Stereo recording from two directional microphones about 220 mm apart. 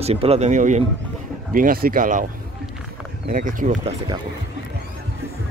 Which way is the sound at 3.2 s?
35° right (ahead or behind).